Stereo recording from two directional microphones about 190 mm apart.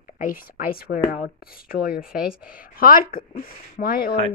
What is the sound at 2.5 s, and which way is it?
Speech, 50° left (ahead or behind).